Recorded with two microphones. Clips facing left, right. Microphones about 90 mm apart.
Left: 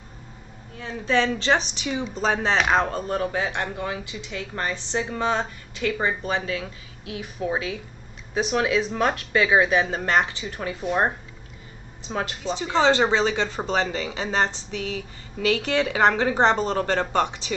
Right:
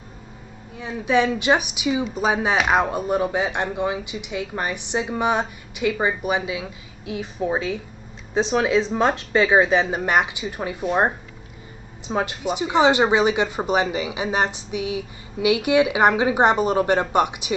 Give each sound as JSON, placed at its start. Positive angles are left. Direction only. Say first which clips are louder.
{"t": 0.7, "sound": "a woman's voice", "louder": "right 3 dB", "side_deg": -15}